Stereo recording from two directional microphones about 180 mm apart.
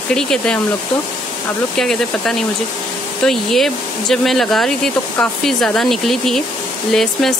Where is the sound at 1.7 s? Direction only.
5° left (ahead or behind).